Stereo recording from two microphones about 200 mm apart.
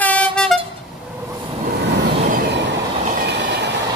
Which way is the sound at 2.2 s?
50° right (ahead or behind).